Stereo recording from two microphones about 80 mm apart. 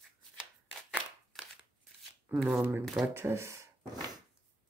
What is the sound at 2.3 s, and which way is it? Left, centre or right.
Speech, right.